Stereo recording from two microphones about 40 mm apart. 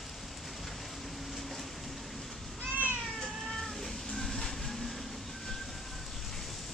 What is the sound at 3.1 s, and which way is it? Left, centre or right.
Cat, centre.